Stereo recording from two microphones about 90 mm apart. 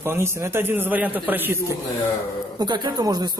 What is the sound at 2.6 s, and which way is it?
Speech, 50° right (ahead or behind).